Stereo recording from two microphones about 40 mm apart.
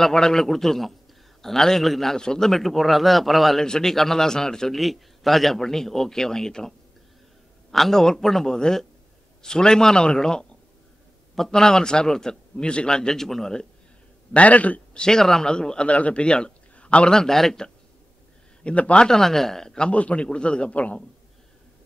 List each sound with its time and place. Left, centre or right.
0.0 s a man's voice: centre
2.1 s speech: centre
3.6 s a man's voice: centre
4.7 s a man's voice: centre
7.7 s a man's voice: centre
14.3 s a man's voice: left
15.0 s a man's voice: centre
17.1 s a man's voice: centre
18.6 s speech: left
19.0 s a man's voice: centre
19.9 s a man's voice: left